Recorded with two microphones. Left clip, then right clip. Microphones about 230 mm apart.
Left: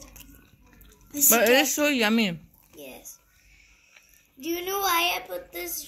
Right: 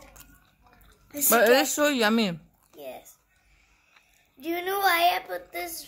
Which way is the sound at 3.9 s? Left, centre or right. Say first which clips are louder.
Left 2 dB; centre.